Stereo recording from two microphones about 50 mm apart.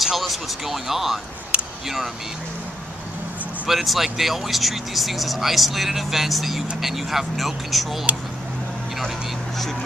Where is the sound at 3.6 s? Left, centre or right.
Centre.